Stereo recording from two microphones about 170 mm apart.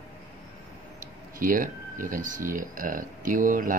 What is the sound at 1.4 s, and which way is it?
Speech, 55° right (ahead or behind).